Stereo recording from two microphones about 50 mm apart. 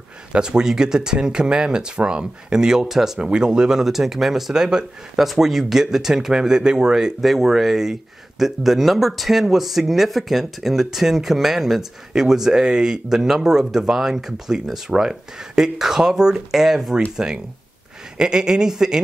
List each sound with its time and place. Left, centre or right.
0.3 s speech: centre